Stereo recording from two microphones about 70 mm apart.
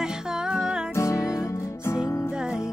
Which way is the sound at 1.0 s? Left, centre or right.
Left.